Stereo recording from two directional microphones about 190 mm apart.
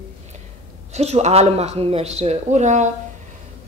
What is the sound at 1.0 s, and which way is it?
A woman's voice, 35° right (ahead or behind).